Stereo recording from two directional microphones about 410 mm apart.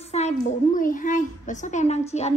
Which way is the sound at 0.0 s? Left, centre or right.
Centre.